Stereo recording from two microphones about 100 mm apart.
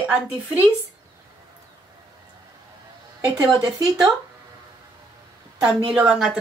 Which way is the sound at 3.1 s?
35° right (ahead or behind).